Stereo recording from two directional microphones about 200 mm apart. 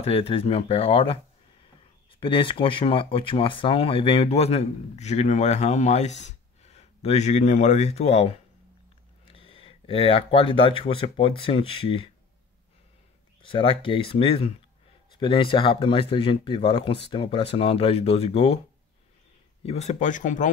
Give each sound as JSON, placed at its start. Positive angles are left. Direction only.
{"t": 0.0, "sound": "speech", "side_deg": 30}
{"t": 13.4, "sound": "speech", "side_deg": 25}
{"t": 19.6, "sound": "speech", "side_deg": 35}